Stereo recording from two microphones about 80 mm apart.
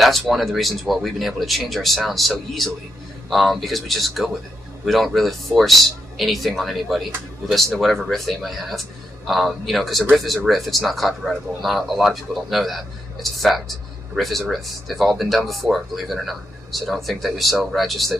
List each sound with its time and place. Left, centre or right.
0.0 s speech: centre